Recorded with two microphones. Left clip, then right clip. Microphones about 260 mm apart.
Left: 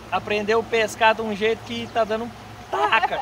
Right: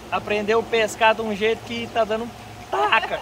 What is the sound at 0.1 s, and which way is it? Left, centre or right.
Speech, centre.